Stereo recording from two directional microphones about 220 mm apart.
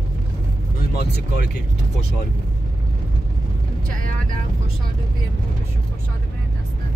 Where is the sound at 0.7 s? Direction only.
45° left (ahead or behind).